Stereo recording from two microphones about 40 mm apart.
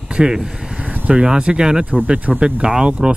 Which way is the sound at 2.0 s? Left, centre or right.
Right.